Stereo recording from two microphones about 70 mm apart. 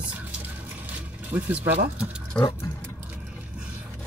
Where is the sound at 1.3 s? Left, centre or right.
Right.